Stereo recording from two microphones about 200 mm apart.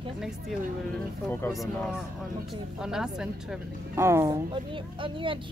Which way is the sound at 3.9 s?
15° right (ahead or behind).